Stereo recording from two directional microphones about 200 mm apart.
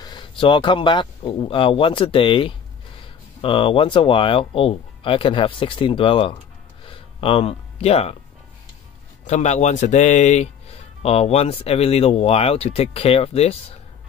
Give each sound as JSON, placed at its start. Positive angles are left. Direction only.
{"t": 0.0, "sound": "speech", "side_deg": 20}
{"t": 6.9, "sound": "a sound", "side_deg": 25}
{"t": 9.2, "sound": "a man's voice", "side_deg": 35}